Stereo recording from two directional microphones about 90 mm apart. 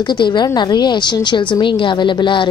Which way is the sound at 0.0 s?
60° left (ahead or behind).